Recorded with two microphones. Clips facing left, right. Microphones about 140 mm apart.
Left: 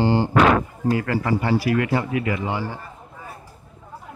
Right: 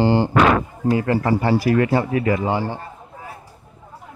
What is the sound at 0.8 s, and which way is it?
A man's voice, 25° right (ahead or behind).